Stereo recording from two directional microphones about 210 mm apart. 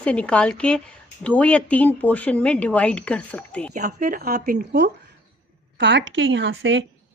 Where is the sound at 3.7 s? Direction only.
35° right (ahead or behind); by 6.8 s 60° right (ahead or behind).